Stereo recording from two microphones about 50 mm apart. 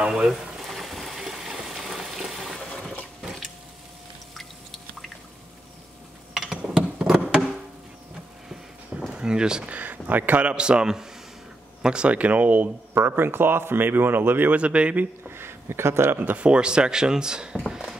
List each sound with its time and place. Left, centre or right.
0.0 s boiling: centre
6.3 s a sound: centre
9.1 s speech: centre
9.7 s a man's voice: right
13.0 s speech: right
14.5 s a man's voice: right
15.2 s a sound: right
16.3 s speech: right
17.6 s a sound: centre